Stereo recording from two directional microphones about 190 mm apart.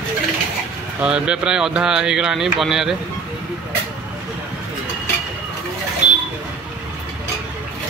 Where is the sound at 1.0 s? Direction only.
5° right (ahead or behind).